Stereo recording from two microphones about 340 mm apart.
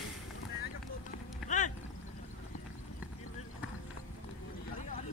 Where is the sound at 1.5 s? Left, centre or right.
Left.